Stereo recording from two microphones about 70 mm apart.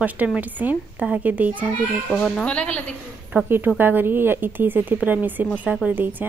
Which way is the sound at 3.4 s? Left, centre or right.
Right.